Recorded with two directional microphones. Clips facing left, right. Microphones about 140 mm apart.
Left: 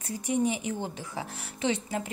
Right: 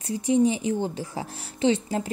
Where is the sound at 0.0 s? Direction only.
30° right (ahead or behind).